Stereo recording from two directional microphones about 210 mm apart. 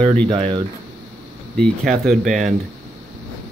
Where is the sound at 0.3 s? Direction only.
25° right (ahead or behind).